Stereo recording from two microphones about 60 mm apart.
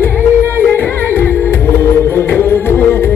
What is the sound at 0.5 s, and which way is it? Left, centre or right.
Music, left.